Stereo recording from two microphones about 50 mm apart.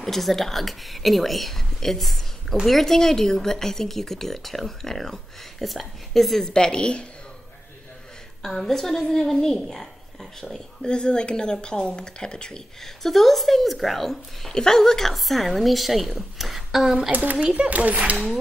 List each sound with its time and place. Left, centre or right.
0.0 s speech: centre
8.4 s speech: centre
13.0 s speech: centre
16.8 s speech: centre
17.1 s a child's voice: right
17.4 s a child's voice: centre
17.6 s a child's voice: right